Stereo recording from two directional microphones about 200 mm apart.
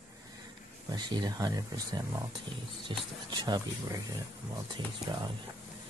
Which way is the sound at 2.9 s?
20° right (ahead or behind).